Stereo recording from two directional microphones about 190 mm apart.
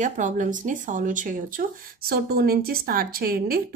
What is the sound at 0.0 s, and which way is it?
Speech, 40° right (ahead or behind).